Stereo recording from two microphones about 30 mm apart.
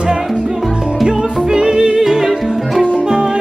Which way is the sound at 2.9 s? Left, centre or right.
Right.